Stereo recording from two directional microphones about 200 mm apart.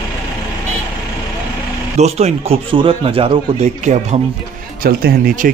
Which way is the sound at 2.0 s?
30° right (ahead or behind).